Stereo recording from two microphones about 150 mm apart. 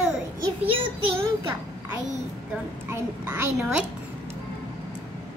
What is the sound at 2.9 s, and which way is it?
Speech, 15° right (ahead or behind).